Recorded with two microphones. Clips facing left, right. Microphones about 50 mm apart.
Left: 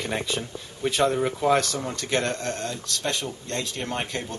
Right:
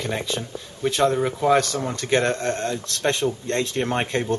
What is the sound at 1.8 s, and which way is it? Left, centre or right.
Speech, centre.